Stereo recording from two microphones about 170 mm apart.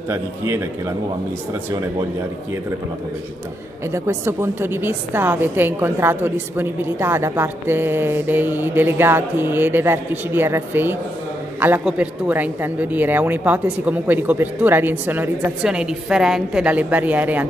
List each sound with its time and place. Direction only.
0.1 s a woman's voice: 15° right (ahead or behind)
3.9 s a woman's voice: 15° right (ahead or behind)